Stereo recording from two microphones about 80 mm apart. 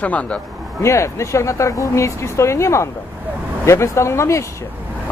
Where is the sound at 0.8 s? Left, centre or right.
Left.